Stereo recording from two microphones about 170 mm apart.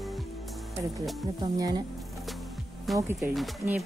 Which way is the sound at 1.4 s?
25° right (ahead or behind).